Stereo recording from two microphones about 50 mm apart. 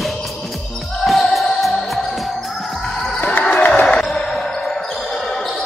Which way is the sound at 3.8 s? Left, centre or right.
Centre.